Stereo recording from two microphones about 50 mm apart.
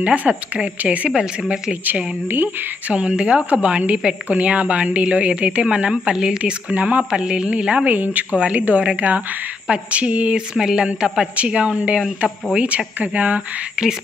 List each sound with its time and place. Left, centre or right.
0.0 s a woman's voice: right
2.2 s speech: right
2.9 s a woman's voice: right
10.5 s speech: centre
11.3 s a woman's voice: right